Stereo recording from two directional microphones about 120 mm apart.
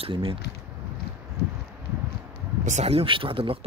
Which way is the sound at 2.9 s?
45° right (ahead or behind).